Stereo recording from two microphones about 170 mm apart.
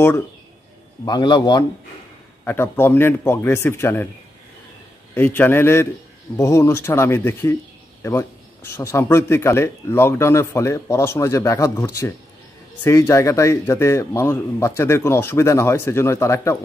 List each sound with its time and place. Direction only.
1.0 s a man's voice: 25° left (ahead or behind)
2.4 s speech: 15° left (ahead or behind)
5.1 s speech: 10° left (ahead or behind)